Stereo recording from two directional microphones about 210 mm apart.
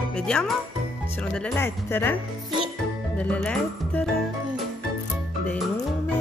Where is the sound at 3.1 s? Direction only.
5° left (ahead or behind).